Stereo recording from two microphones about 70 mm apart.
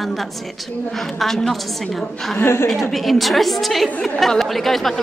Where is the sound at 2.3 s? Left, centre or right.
Left.